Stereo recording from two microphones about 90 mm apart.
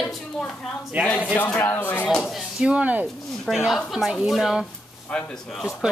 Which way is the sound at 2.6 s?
15° right (ahead or behind).